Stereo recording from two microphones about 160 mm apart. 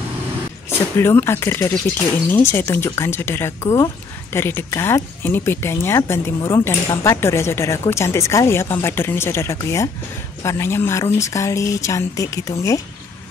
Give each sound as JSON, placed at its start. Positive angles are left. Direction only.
{"t": 0.7, "sound": "speech", "side_deg": 15}